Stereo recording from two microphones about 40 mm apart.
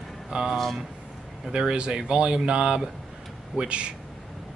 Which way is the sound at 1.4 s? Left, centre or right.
Right.